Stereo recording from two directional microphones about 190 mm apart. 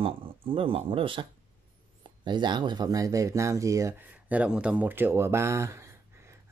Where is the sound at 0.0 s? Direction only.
30° right (ahead or behind).